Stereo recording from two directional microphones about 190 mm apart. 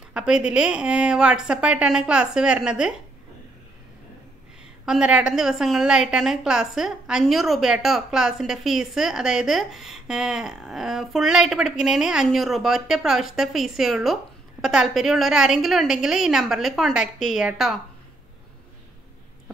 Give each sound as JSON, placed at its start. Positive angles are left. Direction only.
{"t": 0.1, "sound": "a woman's voice", "side_deg": -5}
{"t": 4.8, "sound": "a woman's voice", "side_deg": -5}